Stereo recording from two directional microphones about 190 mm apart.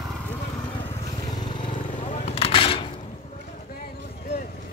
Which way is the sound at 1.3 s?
25° left (ahead or behind).